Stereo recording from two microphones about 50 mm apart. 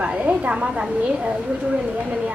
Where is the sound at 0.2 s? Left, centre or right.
Right.